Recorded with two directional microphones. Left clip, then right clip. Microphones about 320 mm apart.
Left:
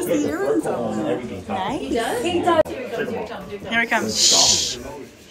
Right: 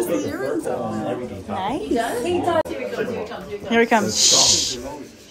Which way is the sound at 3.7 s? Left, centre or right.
Centre.